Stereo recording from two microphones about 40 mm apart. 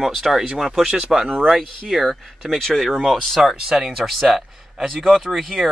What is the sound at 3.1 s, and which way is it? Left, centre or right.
Speech, centre.